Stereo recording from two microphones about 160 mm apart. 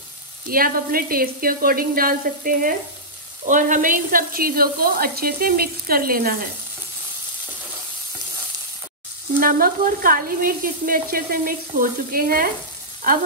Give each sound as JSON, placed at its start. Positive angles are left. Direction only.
{"t": 0.5, "sound": "speech", "side_deg": -65}
{"t": 9.4, "sound": "speech", "side_deg": -65}